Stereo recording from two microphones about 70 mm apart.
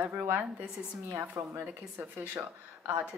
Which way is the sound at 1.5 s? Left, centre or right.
Right.